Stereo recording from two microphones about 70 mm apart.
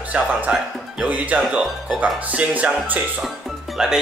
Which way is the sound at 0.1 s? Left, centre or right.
Centre.